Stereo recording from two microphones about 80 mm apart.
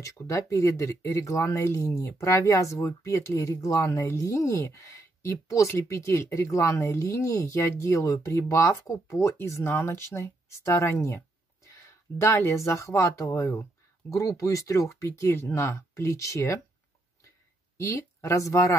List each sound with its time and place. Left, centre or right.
0.0 s speech: left
17.7 s speech: left